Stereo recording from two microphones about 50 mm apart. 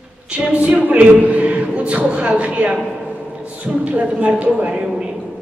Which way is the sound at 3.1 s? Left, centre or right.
Right.